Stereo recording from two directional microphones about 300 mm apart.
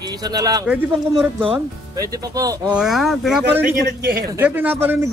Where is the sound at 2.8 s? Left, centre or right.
Centre.